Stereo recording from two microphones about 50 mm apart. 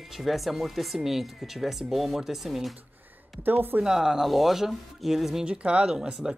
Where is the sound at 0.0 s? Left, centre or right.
Centre.